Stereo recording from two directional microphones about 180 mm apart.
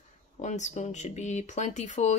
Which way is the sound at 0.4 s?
40° left (ahead or behind).